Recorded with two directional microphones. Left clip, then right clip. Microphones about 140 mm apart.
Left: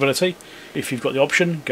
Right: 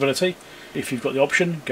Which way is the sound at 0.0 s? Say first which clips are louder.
Left 2 dB; 40° left (ahead or behind).